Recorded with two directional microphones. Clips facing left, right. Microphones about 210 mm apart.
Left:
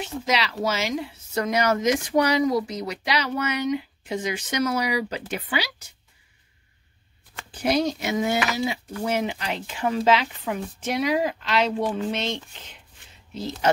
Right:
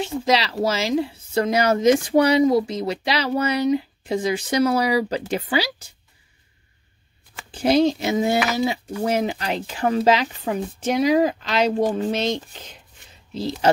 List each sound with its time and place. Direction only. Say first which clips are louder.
0.0 s a woman's voice: right 5 dB; 30° right (ahead or behind)
7.5 s a woman's voice: right 5 dB; 30° right (ahead or behind)